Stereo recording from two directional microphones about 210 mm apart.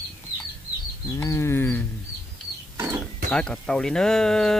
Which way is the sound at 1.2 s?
15° left (ahead or behind).